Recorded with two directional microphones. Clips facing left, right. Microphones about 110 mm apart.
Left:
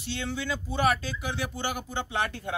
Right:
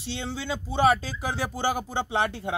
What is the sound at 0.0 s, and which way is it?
Speech, 30° right (ahead or behind).